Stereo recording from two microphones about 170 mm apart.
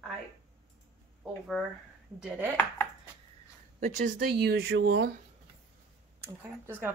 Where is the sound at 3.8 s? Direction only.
50° right (ahead or behind).